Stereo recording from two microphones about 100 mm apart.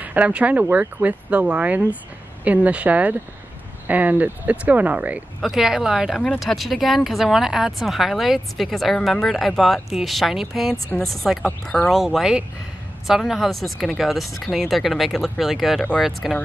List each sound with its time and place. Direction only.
0.0 s speech: 15° right (ahead or behind)
5.4 s speech: 5° right (ahead or behind)
6.1 s speech: 5° left (ahead or behind)
11.9 s speech: 5° right (ahead or behind)